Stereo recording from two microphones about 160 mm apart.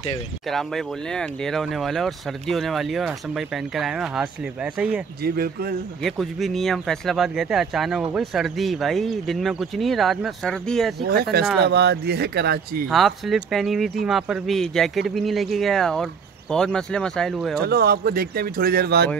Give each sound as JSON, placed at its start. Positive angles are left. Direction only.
{"t": 0.5, "sound": "speech", "side_deg": 0}
{"t": 5.2, "sound": "speech", "side_deg": -75}
{"t": 6.0, "sound": "speech", "side_deg": 0}
{"t": 11.0, "sound": "speech", "side_deg": -80}
{"t": 11.6, "sound": "speech", "side_deg": -90}
{"t": 12.8, "sound": "speech", "side_deg": 0}
{"t": 17.6, "sound": "speech", "side_deg": -75}